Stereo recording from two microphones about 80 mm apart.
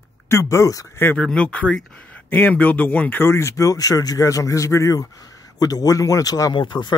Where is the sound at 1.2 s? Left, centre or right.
Centre.